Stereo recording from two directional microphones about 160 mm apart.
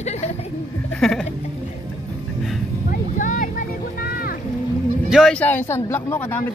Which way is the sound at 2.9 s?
55° left (ahead or behind).